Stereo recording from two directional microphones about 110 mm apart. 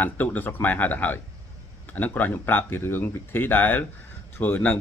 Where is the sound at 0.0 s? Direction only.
15° left (ahead or behind).